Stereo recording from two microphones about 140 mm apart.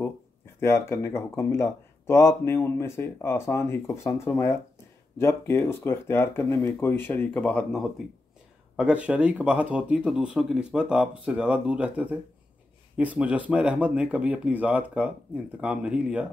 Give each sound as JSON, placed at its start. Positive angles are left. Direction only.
{"t": 0.6, "sound": "speech", "side_deg": 20}
{"t": 8.7, "sound": "speech", "side_deg": -10}